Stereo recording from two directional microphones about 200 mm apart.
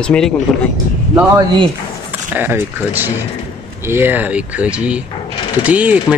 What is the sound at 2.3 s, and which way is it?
Speech, 10° right (ahead or behind).